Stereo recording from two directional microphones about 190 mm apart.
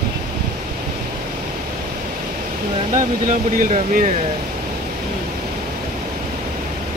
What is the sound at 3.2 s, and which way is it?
Speech, 45° right (ahead or behind).